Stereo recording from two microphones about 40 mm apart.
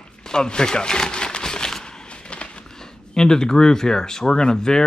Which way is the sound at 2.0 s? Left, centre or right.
Left.